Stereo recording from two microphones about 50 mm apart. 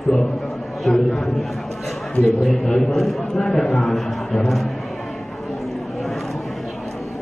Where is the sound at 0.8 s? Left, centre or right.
Centre.